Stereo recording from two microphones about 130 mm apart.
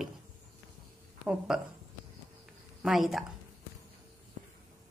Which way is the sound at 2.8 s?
Centre (ahead or behind).